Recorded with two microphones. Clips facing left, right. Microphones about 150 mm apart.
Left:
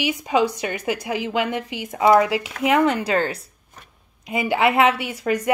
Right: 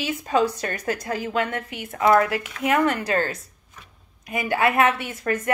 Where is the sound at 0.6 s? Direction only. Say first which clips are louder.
Left 2 dB; 10° left (ahead or behind).